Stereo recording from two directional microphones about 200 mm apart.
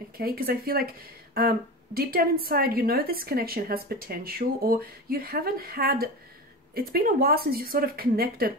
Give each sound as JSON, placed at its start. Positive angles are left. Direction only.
{"t": 0.2, "sound": "a woman's voice", "side_deg": -45}